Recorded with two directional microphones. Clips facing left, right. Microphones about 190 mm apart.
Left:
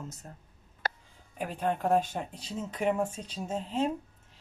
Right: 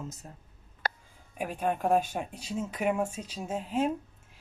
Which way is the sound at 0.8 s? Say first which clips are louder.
Right 1 dB; 65° right (ahead or behind).